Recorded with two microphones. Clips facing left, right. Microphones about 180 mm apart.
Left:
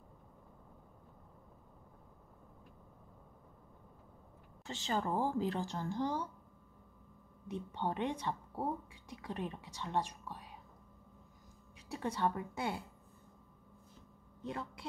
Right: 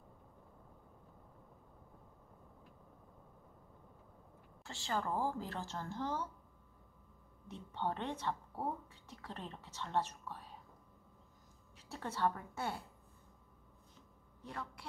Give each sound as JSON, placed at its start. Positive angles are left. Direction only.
{"t": 4.6, "sound": "speech", "side_deg": 20}
{"t": 7.4, "sound": "speech", "side_deg": 15}
{"t": 11.9, "sound": "speech", "side_deg": 15}
{"t": 14.4, "sound": "a man's voice", "side_deg": 20}